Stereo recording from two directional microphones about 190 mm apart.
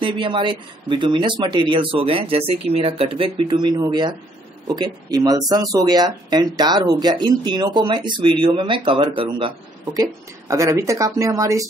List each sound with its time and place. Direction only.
0.0 s speech: 25° right (ahead or behind)
10.5 s speech: 15° right (ahead or behind)